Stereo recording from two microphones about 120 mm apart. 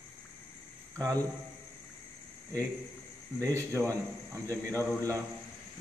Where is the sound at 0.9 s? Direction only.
30° right (ahead or behind).